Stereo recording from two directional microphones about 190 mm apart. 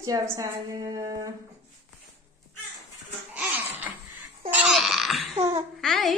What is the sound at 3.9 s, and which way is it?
Babbling, 10° right (ahead or behind).